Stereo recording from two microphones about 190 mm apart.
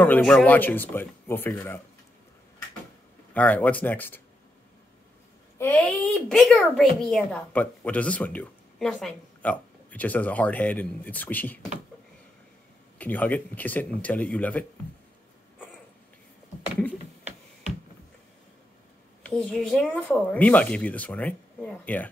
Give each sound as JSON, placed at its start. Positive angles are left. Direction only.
{"t": 0.0, "sound": "speech", "side_deg": 10}
{"t": 3.3, "sound": "speech", "side_deg": 10}
{"t": 5.6, "sound": "speech", "side_deg": 10}
{"t": 13.0, "sound": "speech", "side_deg": 10}
{"t": 19.2, "sound": "speech", "side_deg": 5}